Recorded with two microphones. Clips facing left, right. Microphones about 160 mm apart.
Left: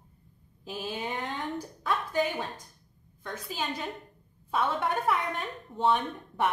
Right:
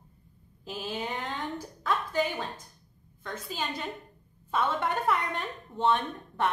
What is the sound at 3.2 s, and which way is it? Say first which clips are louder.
A woman's voice: even; 5° left (ahead or behind).